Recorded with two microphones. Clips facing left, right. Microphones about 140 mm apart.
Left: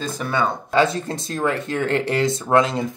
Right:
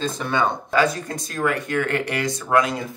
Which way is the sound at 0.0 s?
5° left (ahead or behind).